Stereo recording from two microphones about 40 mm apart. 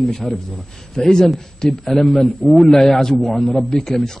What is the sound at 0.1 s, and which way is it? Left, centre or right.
A man's voice, centre.